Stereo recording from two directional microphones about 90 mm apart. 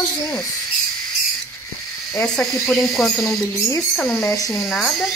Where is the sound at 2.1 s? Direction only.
5° left (ahead or behind).